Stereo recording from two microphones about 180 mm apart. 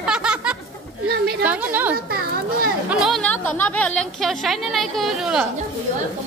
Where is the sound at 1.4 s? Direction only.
10° right (ahead or behind).